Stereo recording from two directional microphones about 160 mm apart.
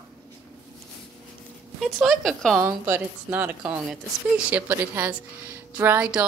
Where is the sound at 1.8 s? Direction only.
Centre (ahead or behind).